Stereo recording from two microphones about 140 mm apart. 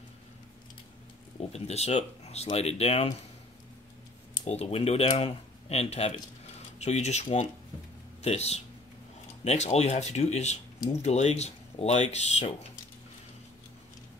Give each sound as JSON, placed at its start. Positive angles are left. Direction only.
{"t": 1.5, "sound": "speech", "side_deg": 50}
{"t": 4.5, "sound": "speech", "side_deg": 50}